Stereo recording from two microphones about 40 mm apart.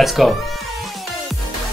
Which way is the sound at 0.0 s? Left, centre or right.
Centre.